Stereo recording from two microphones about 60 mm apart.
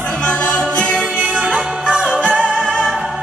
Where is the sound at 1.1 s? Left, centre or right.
Centre.